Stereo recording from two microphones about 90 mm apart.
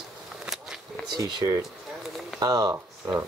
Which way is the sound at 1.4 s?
55° right (ahead or behind).